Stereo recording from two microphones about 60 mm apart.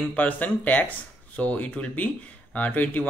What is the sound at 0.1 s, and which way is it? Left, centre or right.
Speech, left.